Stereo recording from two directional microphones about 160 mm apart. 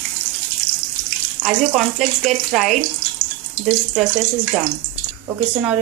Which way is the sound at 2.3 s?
Centre (ahead or behind).